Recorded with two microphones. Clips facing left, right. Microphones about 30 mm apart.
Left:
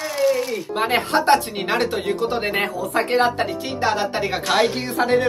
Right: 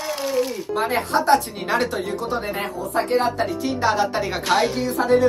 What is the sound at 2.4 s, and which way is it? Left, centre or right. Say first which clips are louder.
Speech: left 4 dB; left.